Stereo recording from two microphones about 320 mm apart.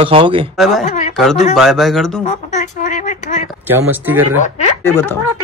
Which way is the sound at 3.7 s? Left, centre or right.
Centre.